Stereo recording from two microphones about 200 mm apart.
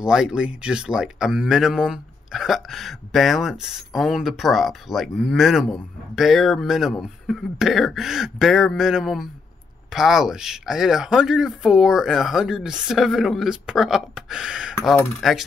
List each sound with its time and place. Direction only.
0.0 s speech: 5° right (ahead or behind)